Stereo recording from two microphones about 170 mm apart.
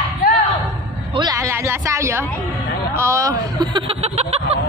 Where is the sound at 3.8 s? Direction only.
35° right (ahead or behind).